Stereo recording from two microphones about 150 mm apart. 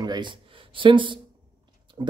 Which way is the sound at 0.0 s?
30° right (ahead or behind).